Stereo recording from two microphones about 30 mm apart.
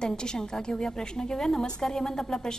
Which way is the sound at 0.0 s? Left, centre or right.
Left.